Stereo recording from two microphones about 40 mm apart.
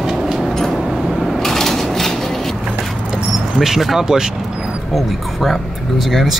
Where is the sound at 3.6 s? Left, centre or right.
Centre.